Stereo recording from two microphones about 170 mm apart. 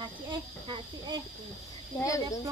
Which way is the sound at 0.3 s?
25° right (ahead or behind).